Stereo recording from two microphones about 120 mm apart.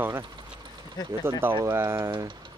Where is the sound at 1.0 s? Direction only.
35° left (ahead or behind).